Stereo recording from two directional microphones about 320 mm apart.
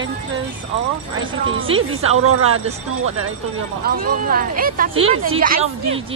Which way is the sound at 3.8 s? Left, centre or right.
Right.